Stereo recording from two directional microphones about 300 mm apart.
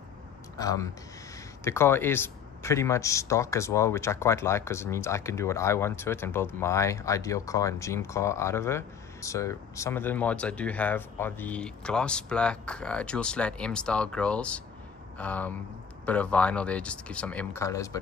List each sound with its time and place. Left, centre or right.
0.6 s a man's voice: centre